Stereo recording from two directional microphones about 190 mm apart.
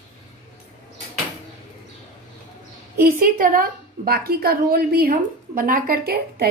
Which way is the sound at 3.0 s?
45° right (ahead or behind).